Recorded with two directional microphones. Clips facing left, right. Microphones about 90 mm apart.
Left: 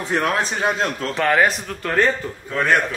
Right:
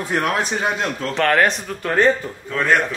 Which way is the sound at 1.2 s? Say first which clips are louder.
Right 1 dB; 5° left (ahead or behind).